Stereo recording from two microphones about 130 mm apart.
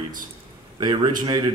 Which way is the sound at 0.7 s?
35° right (ahead or behind).